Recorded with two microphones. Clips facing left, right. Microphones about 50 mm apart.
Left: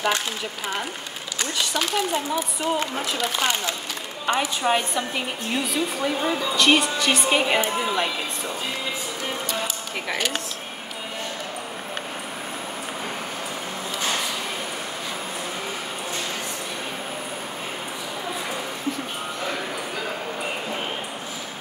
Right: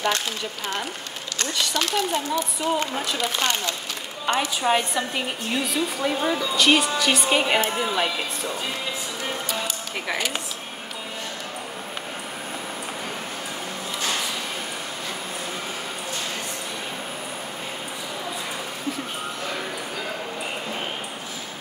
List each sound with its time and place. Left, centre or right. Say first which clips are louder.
1.4 s a woman's voice: even; centre
10.1 s speech: left 1 dB; left